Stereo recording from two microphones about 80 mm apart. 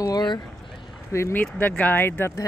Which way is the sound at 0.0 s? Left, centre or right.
Left.